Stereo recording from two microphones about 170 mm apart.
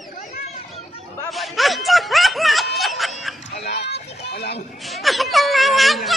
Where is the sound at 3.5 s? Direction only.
80° left.